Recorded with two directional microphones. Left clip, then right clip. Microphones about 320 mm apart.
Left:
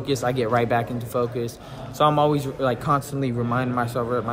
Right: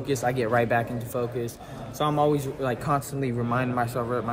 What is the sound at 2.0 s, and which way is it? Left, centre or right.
Speech, centre.